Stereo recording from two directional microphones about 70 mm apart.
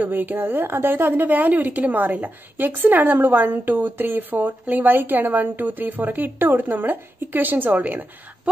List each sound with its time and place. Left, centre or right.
0.0 s a woman's voice: right